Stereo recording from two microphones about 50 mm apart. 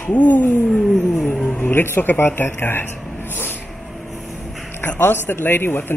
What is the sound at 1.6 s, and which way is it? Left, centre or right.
Speech, left.